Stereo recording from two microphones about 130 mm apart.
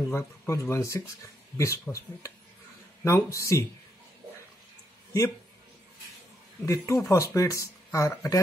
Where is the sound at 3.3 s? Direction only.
25° left (ahead or behind).